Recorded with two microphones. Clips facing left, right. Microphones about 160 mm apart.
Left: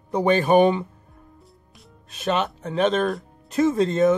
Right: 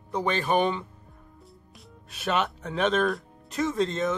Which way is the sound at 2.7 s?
Centre (ahead or behind).